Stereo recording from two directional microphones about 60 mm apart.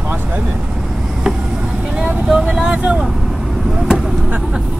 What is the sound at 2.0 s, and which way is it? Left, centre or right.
Vehicle, centre.